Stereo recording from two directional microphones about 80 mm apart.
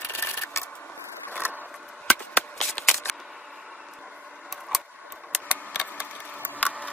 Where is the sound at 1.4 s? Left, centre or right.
Right.